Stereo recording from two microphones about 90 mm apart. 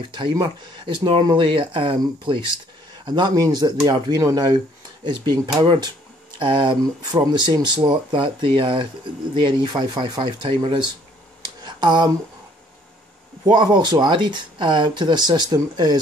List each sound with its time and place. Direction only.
0.1 s speech: 60° right (ahead or behind)
3.1 s speech: 55° right (ahead or behind)
6.3 s speech: 70° right (ahead or behind)
7.1 s speech: 50° right (ahead or behind)
11.6 s a sound: 60° right (ahead or behind)
13.5 s speech: 55° right (ahead or behind)